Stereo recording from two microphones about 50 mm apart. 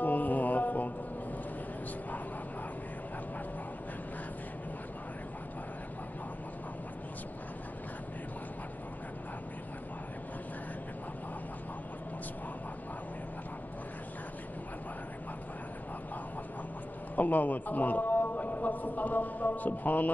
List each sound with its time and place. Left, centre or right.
0.0 s music: left
17.1 s a man's voice: left